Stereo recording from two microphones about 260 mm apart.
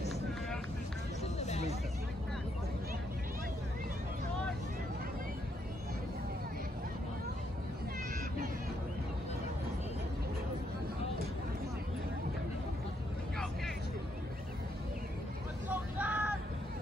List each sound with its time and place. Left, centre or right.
1.4 s hubbub: left
15.7 s vehicle: centre